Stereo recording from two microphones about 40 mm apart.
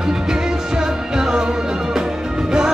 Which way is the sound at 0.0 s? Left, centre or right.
Centre.